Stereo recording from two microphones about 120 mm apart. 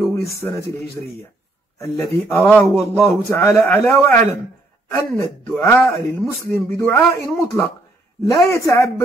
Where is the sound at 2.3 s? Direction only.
Centre (ahead or behind).